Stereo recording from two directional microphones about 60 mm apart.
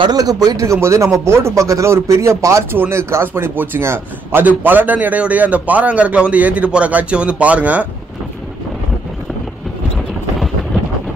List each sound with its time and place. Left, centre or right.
0.1 s speech: right
0.7 s speech: right
2.7 s a man's voice: right
4.5 s a man's voice: right
9.9 s vehicle: centre